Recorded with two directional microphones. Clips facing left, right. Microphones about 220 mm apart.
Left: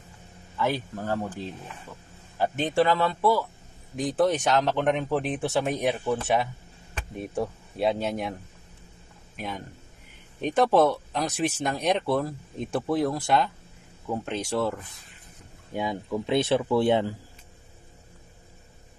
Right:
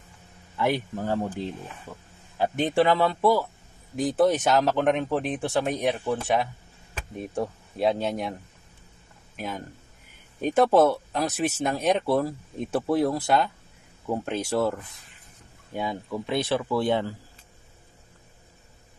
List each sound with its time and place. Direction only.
0.6 s a man's voice: 15° right (ahead or behind)
2.3 s a man's voice: 15° right (ahead or behind)
10.4 s speech: 5° right (ahead or behind)
15.7 s speech: 15° left (ahead or behind)